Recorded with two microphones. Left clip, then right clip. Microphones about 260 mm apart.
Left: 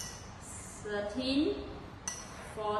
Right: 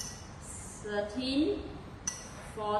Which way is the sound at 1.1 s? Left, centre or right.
Centre.